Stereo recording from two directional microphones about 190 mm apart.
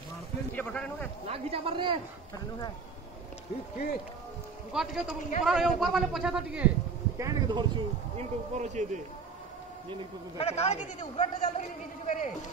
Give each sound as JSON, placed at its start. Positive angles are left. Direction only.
{"t": 0.6, "sound": "speech", "side_deg": 5}
{"t": 1.2, "sound": "speech", "side_deg": -30}
{"t": 4.7, "sound": "speech", "side_deg": 0}
{"t": 7.2, "sound": "speech", "side_deg": -20}
{"t": 8.2, "sound": "speech", "side_deg": -35}
{"t": 10.3, "sound": "a man's voice", "side_deg": 35}